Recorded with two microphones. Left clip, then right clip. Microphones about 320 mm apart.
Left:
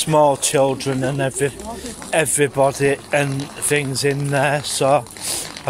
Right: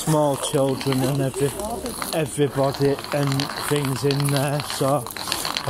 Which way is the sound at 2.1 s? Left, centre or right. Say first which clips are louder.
Left 6 dB; left.